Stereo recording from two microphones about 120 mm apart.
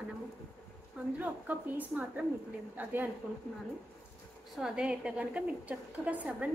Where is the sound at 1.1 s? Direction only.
15° right (ahead or behind).